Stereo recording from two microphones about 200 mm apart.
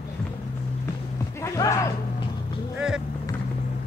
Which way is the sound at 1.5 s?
15° left (ahead or behind).